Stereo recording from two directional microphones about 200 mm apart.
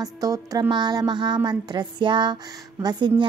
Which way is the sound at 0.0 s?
20° right (ahead or behind).